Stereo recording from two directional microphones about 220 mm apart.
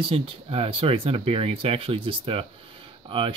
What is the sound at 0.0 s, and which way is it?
Speech, 25° right (ahead or behind).